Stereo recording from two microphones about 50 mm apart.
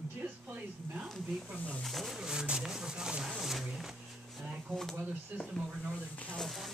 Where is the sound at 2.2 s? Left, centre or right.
Centre.